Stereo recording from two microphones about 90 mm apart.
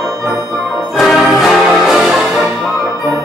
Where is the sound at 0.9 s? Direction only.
Centre (ahead or behind).